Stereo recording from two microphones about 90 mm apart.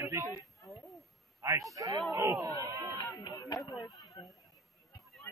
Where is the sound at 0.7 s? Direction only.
Centre (ahead or behind).